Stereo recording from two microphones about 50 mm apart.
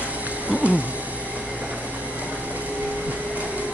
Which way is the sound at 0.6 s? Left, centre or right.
Right.